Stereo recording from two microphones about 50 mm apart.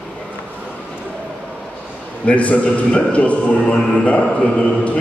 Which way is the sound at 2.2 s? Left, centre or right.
Left.